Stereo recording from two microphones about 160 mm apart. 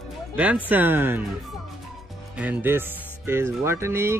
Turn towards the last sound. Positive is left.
turn(degrees=-15)  # may be behind; listen again after turning